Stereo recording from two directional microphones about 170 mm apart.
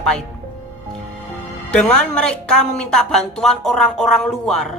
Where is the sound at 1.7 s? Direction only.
5° left (ahead or behind).